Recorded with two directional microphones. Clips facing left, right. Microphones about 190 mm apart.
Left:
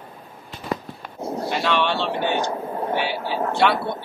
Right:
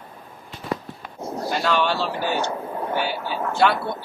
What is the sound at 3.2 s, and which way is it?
Speech, 30° left (ahead or behind).